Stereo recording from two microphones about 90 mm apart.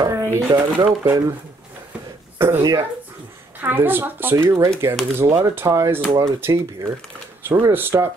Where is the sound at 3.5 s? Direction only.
20° right (ahead or behind).